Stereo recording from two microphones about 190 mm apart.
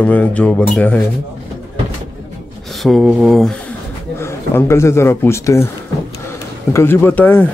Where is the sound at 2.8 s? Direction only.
Centre (ahead or behind).